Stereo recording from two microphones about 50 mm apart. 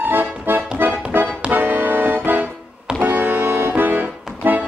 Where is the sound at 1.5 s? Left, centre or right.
Right.